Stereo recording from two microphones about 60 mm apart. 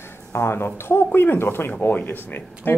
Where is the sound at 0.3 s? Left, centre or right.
Left.